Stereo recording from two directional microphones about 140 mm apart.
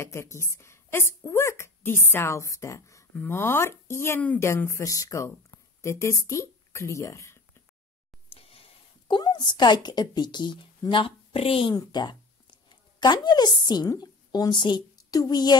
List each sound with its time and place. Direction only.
0.0 s speech: 20° left (ahead or behind)
8.4 s speech: 45° left (ahead or behind)
11.7 s a woman's voice: 30° left (ahead or behind)